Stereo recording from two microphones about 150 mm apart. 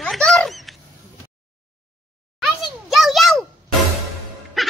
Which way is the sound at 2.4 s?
Centre (ahead or behind).